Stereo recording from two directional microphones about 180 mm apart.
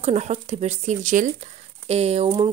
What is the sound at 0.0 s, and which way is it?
A woman's voice, 35° right (ahead or behind).